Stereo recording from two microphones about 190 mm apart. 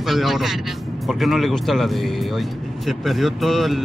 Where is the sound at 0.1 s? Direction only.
Centre (ahead or behind).